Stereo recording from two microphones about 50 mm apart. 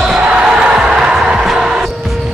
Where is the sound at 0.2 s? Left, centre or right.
Centre.